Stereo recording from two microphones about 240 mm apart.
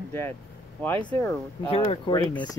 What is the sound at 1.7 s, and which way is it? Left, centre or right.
Speech, left.